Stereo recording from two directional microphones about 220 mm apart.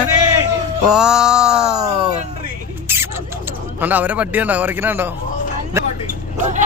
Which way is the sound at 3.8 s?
5° right (ahead or behind).